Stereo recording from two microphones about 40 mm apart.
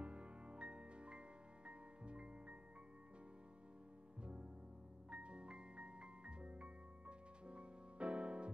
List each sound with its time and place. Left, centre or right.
0.0 s music: right
4.2 s music: right